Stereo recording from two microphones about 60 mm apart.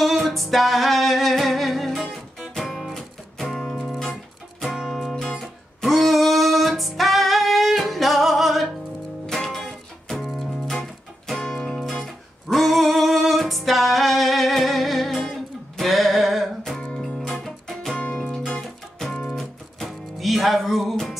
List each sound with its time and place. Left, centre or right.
0.0 s music: centre
11.3 s music: centre
12.0 s music: centre
17.9 s music: centre
18.3 s music: centre